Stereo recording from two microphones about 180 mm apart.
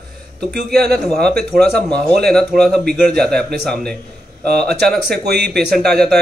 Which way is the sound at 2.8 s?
60° right (ahead or behind).